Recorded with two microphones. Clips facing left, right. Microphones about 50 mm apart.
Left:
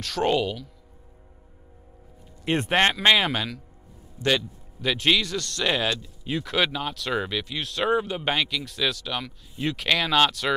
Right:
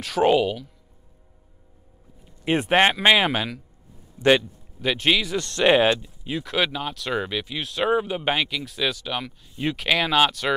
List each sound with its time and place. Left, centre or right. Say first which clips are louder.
0.0 s speech: right 4 dB; centre
2.4 s speech: right 3 dB; centre
4.2 s speech: right 6 dB; right
4.8 s speech: right 1 dB; centre
5.3 s speech: right 7 dB; right
6.2 s speech: even; centre